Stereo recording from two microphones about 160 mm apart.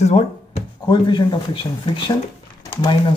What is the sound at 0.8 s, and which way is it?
Speech, 30° left (ahead or behind).